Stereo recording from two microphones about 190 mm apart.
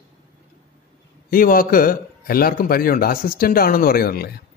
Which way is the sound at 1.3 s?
50° left (ahead or behind).